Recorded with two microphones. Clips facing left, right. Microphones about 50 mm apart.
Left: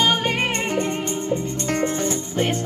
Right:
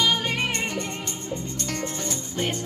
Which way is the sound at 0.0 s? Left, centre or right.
Left.